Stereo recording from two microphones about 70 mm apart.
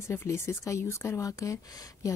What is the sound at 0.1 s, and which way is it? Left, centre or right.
Speech, left.